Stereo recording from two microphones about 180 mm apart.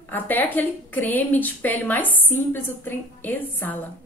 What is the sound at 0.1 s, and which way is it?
A woman's voice, 10° left (ahead or behind).